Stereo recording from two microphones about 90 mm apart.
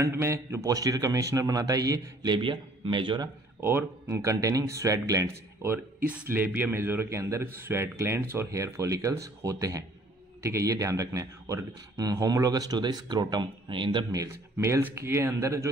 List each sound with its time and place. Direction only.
0.0 s a man's voice: 30° right (ahead or behind)
0.7 s speech: 40° right (ahead or behind)
2.3 s a man's voice: 65° right (ahead or behind)
3.6 s speech: 30° right (ahead or behind)
5.6 s a man's voice: 25° right (ahead or behind); by 14.0 s 65° right (ahead or behind)
14.1 s speech: 35° right (ahead or behind)
14.8 s speech: 25° right (ahead or behind)